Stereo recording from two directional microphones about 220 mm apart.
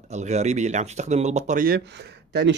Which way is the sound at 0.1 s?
30° right (ahead or behind).